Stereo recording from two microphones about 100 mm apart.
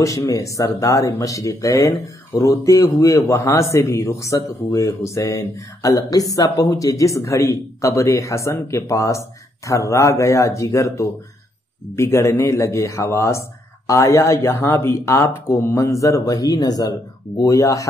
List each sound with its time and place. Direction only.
0.0 s a man's voice: 35° left (ahead or behind)